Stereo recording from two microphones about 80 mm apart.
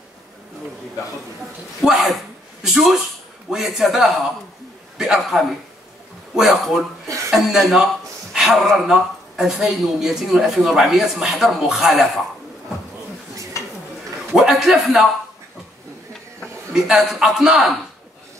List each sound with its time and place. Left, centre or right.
1.8 s a man's voice: centre
7.2 s chuckle: centre
8.7 s speech: centre
13.5 s dishes: left
14.3 s speech: centre
16.7 s a man's voice: centre